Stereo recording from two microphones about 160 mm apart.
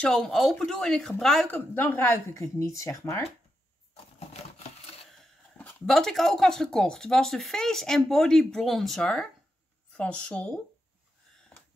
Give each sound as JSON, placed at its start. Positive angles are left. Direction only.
{"t": 0.0, "sound": "a woman's voice", "side_deg": 0}
{"t": 5.1, "sound": "a woman's voice", "side_deg": 5}